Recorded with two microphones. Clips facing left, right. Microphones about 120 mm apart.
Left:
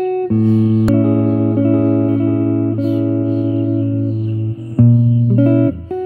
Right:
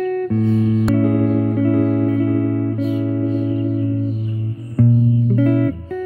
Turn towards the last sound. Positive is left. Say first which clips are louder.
# left 4 dB
turn(degrees=30)  # may be behind; listen again after turning